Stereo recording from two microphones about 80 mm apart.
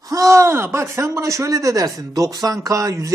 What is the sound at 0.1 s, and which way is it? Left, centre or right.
Speech, right.